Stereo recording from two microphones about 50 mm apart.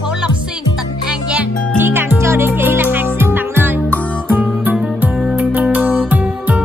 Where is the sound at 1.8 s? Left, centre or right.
Right.